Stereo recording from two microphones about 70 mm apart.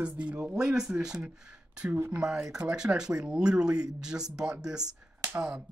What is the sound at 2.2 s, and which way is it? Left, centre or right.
Speech, centre.